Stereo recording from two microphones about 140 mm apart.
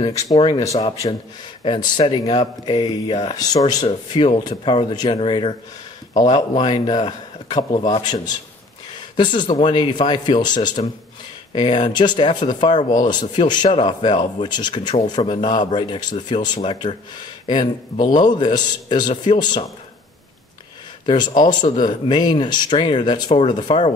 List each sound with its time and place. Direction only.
0.6 s speech: 25° left (ahead or behind)
1.6 s speech: 35° left (ahead or behind)
21.0 s speech: 35° left (ahead or behind)